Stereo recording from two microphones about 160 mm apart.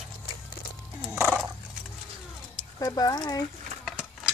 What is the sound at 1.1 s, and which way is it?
Horse, 15° right (ahead or behind).